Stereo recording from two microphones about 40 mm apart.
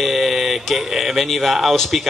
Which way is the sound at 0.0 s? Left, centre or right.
Centre.